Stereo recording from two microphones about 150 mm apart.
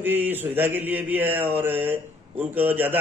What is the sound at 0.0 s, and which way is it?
Speech, 15° right (ahead or behind).